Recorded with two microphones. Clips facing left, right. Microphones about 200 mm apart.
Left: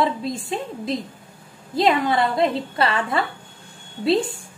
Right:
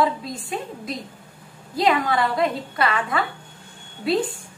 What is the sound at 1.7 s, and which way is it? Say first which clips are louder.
A woman's voice: left 2 dB; 25° left (ahead or behind).